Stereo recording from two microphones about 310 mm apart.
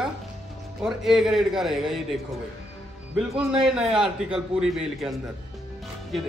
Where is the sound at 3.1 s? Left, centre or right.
Centre.